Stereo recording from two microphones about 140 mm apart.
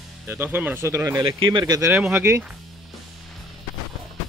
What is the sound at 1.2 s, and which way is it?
Speech, 35° right (ahead or behind).